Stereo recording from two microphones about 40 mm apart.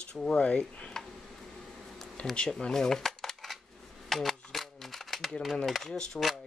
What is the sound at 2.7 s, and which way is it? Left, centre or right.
Dishes, centre.